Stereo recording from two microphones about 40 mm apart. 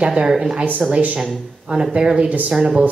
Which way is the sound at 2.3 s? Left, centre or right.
Right.